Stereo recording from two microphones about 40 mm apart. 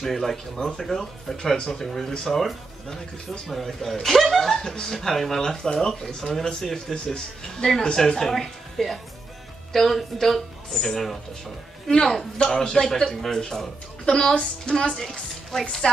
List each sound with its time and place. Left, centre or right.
0.0 s speech: centre
12.4 s speech: centre